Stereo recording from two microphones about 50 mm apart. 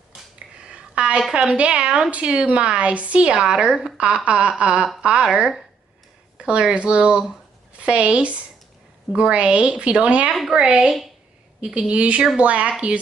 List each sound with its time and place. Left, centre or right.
0.7 s a sound: right
1.3 s a woman's voice: centre
11.9 s a woman's voice: right